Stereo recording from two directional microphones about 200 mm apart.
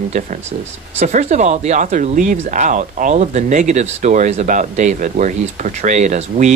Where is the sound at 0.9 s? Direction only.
35° right (ahead or behind).